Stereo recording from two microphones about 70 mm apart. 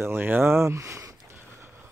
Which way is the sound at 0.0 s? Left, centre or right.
Right.